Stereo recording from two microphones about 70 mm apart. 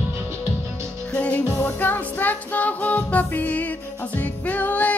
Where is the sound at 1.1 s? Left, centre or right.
Centre.